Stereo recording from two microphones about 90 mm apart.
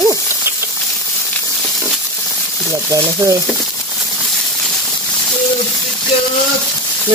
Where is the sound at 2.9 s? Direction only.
35° right (ahead or behind).